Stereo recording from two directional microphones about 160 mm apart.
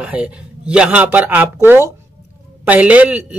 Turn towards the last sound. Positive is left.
turn(degrees=-10)  # may be behind; listen again after turning